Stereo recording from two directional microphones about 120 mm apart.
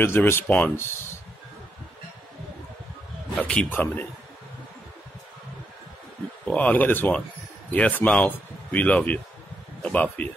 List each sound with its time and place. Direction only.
0.0 s speech: 20° left (ahead or behind)
3.3 s speech: 10° left (ahead or behind)
6.4 s speech: 10° left (ahead or behind)